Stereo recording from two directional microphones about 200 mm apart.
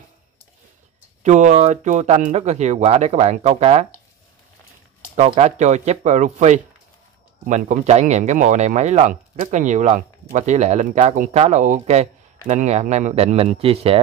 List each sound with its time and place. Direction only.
1.2 s speech: 35° right (ahead or behind)
5.1 s speech: 35° right (ahead or behind)